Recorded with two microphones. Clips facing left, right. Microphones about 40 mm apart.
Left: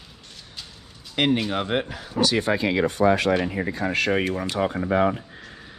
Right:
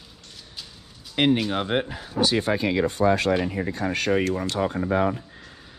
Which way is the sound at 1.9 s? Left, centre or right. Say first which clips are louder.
Left 1 dB; left.